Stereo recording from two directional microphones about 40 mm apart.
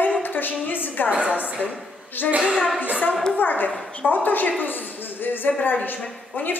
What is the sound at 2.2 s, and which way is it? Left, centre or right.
Speech, left.